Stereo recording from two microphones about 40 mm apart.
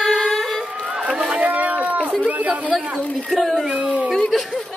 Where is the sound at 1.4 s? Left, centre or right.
Right.